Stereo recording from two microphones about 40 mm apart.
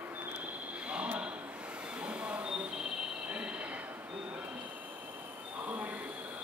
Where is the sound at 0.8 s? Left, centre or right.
Right.